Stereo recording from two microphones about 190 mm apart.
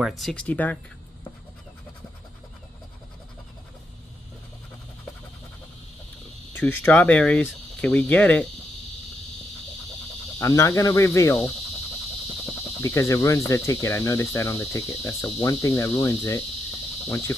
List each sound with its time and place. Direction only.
0.0 s speech: centre (ahead or behind)
6.5 s cricket: 10° left (ahead or behind)
10.4 s cricket: 15° left (ahead or behind)
12.8 s cricket: 15° left (ahead or behind)